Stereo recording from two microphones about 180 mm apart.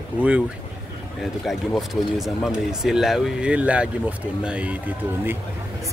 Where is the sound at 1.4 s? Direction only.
Centre (ahead or behind).